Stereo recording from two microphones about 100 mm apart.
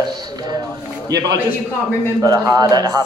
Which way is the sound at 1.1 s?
40° right (ahead or behind).